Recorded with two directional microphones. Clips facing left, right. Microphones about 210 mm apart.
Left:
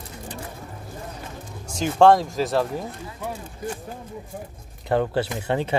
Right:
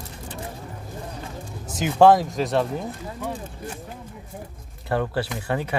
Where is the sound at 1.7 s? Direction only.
5° right (ahead or behind).